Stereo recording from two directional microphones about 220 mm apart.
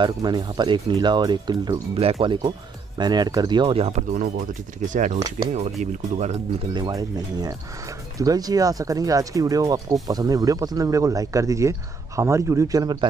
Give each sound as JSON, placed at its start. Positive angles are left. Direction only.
{"t": 0.0, "sound": "speech", "side_deg": -20}
{"t": 6.7, "sound": "speech", "side_deg": -15}